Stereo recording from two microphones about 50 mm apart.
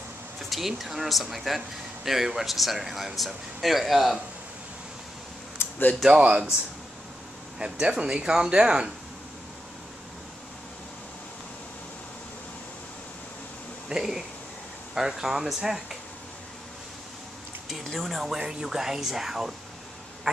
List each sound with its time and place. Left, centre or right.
0.4 s speech: centre
5.6 s a sound: left
6.0 s speech: right
7.5 s speech: centre
13.8 s a sound: centre
15.0 s speech: centre
17.8 s speech: centre